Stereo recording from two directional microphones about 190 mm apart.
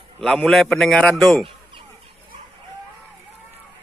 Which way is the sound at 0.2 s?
5° left (ahead or behind).